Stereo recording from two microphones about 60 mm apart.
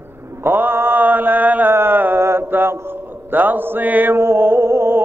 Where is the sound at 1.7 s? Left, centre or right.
Right.